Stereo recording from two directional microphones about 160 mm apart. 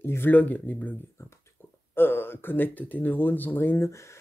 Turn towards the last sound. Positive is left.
turn(degrees=20)  # may be behind; listen again after turning